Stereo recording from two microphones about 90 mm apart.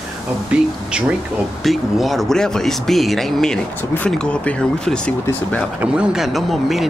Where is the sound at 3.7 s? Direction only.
20° left (ahead or behind).